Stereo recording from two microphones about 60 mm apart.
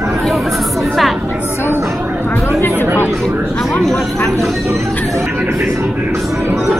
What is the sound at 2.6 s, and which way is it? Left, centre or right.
Chatter, left.